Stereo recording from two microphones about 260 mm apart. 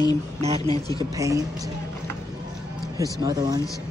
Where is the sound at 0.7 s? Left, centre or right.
Centre.